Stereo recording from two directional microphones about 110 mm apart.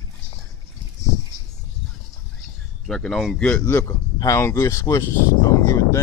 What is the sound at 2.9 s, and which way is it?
Speech, 5° left (ahead or behind).